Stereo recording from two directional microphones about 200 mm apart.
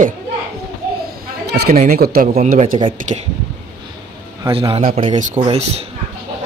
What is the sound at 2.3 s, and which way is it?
Speech, 35° right (ahead or behind).